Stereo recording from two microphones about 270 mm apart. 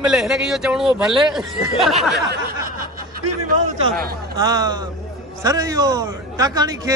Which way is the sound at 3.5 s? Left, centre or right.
Right.